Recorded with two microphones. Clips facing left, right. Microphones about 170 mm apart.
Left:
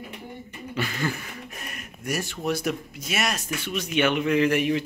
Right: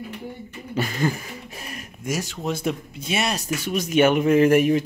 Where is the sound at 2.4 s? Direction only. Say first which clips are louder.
Even; 25° right (ahead or behind).